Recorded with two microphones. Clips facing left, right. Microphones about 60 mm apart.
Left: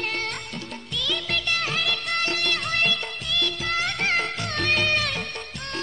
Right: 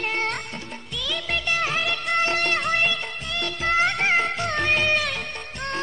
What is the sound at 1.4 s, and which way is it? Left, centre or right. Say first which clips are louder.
Music of bollywood: right 5 dB; centre.